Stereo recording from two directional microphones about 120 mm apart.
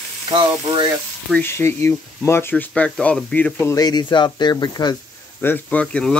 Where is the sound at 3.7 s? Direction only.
35° left (ahead or behind).